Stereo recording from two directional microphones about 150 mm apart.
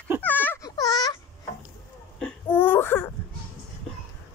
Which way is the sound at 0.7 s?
25° left (ahead or behind).